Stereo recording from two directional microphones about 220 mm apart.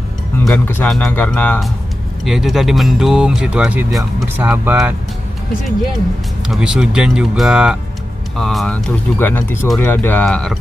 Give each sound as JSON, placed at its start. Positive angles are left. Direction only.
{"t": 0.5, "sound": "speech", "side_deg": 5}
{"t": 6.4, "sound": "speech", "side_deg": -5}